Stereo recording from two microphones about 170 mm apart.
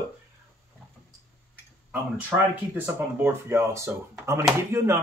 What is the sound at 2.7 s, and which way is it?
Speech, 15° right (ahead or behind).